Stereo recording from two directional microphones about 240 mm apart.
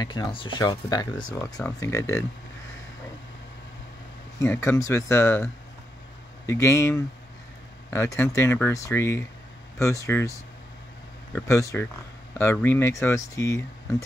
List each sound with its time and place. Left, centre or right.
0.0 s speech: centre
4.4 s speech: centre
11.3 s speech: centre